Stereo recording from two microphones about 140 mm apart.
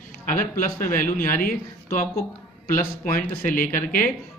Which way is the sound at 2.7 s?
80° left.